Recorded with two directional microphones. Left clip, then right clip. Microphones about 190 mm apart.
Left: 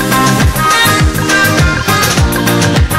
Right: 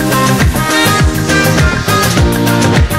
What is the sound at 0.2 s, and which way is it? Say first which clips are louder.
Music: left 2 dB; centre (ahead or behind).